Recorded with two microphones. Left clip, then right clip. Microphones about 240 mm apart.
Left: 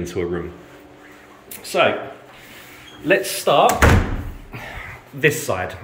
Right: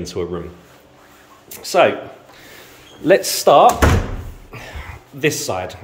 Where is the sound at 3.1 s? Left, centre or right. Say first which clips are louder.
Right 5 dB; right.